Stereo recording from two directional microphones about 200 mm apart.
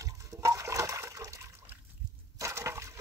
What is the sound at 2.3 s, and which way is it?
Splinter, 15° right (ahead or behind).